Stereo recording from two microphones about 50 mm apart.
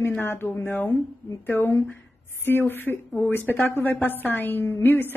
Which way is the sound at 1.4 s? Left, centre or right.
Left.